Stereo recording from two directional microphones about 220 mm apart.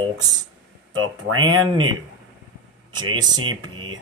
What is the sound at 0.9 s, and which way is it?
Speech, 65° right (ahead or behind).